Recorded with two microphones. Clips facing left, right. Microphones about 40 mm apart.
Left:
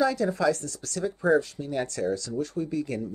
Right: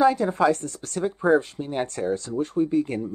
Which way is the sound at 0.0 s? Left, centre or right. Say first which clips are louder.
Right 4 dB; right.